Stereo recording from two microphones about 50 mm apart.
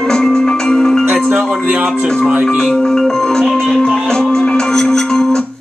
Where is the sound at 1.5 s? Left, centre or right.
Right.